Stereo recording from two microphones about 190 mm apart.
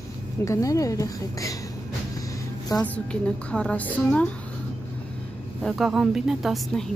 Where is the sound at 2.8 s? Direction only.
5° left (ahead or behind).